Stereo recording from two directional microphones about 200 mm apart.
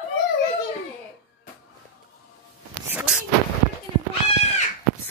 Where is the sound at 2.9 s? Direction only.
5° right (ahead or behind).